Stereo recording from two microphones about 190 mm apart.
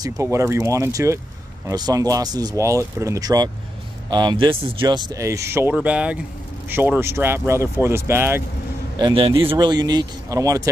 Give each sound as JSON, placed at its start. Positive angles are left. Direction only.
{"t": 0.0, "sound": "speech", "side_deg": -15}
{"t": 8.9, "sound": "a man's voice", "side_deg": -25}